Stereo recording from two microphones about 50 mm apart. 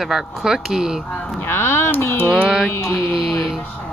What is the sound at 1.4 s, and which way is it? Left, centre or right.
Speech, left.